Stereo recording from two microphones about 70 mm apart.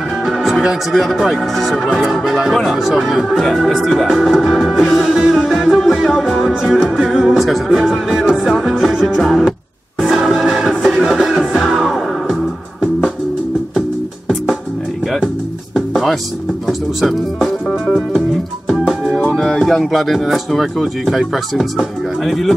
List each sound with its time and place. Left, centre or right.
0.2 s speech: centre
2.0 s music: centre
15.7 s music: centre